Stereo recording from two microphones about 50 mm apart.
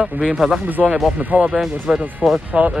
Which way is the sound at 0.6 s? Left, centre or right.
Right.